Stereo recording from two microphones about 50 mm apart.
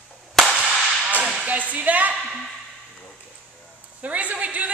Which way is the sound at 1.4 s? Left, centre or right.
Right.